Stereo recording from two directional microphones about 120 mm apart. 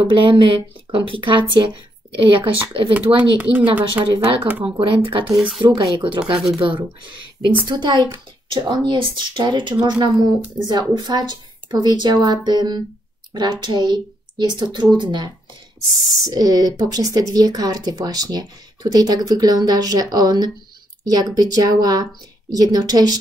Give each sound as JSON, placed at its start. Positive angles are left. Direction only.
{"t": 0.0, "sound": "speech", "side_deg": -45}
{"t": 3.2, "sound": "speech", "side_deg": -10}
{"t": 4.0, "sound": "speech", "side_deg": -45}
{"t": 4.5, "sound": "speech", "side_deg": -10}
{"t": 4.7, "sound": "speech", "side_deg": -45}
{"t": 5.2, "sound": "speech", "side_deg": -5}
{"t": 5.6, "sound": "speech", "side_deg": -35}